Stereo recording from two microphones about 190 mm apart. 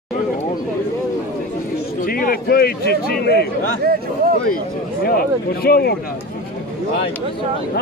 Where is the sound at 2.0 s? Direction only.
50° left (ahead or behind).